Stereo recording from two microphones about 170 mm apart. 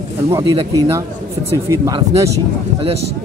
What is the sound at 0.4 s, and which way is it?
Speech, 30° right (ahead or behind).